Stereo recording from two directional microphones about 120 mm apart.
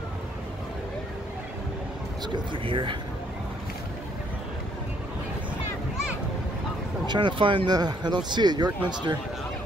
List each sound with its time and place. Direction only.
2.3 s speech: 45° right (ahead or behind)
7.1 s speech: 40° right (ahead or behind)